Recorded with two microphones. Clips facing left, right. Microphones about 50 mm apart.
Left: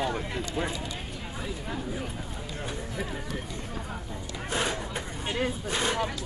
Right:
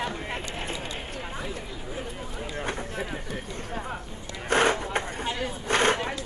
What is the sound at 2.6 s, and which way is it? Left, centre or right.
Speech, right.